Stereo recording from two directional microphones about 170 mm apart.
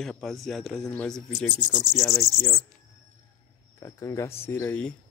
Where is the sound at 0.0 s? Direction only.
Centre (ahead or behind).